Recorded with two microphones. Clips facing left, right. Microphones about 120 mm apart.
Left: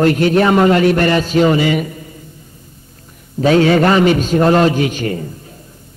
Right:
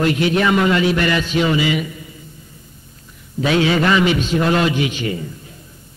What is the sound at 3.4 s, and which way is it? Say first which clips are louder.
A man's voice: left 5 dB; 40° left (ahead or behind).